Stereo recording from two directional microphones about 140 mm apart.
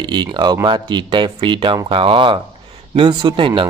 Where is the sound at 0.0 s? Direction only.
30° right (ahead or behind).